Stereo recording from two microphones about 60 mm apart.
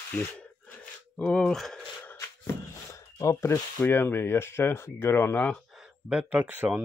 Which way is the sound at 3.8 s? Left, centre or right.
Left.